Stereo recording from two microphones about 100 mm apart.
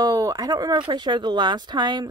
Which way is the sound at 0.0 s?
40° right (ahead or behind).